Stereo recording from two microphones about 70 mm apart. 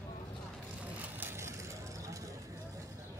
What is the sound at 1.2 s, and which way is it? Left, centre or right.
Vehicle, right.